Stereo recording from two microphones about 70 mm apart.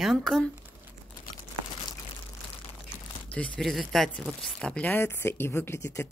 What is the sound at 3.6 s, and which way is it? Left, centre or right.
Speech, centre.